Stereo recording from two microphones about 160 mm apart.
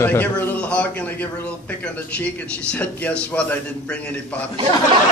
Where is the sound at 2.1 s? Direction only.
10° left (ahead or behind).